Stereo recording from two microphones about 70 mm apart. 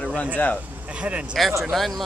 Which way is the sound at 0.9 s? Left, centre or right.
Centre.